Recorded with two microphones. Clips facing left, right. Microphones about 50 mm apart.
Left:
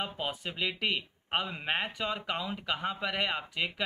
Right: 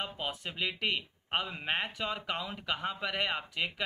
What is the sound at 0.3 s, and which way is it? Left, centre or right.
Speech, centre.